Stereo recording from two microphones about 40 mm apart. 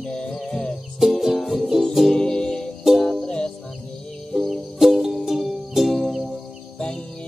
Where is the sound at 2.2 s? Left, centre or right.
Centre.